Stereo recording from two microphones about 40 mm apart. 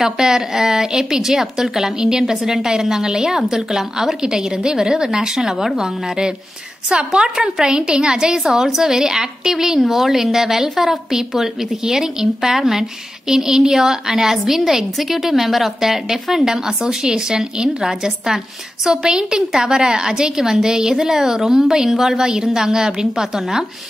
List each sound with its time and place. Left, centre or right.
0.0 s a woman's voice: centre
8.5 s a woman's voice: centre